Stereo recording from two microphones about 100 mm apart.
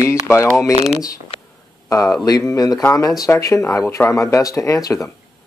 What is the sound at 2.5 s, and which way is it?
Speech, 40° left (ahead or behind).